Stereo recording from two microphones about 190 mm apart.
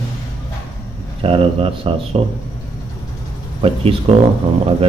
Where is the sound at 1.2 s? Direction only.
30° right (ahead or behind).